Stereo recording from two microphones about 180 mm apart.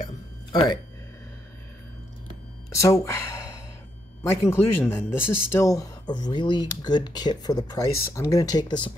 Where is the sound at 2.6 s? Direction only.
15° left (ahead or behind).